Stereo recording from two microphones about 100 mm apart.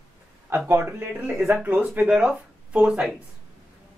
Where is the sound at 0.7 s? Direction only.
25° right (ahead or behind).